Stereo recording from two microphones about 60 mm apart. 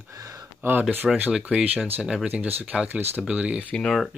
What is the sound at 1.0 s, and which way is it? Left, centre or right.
Speech, right.